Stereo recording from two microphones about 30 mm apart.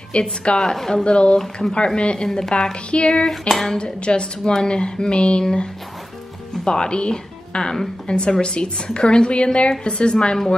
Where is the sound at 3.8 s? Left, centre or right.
Left.